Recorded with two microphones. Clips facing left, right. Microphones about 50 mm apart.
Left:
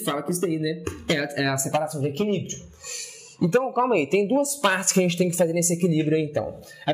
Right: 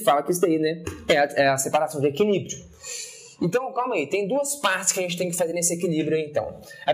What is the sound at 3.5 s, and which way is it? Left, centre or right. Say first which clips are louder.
Speech: left 4 dB; centre.